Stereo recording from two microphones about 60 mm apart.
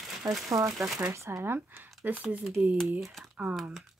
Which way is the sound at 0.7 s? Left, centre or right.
Centre.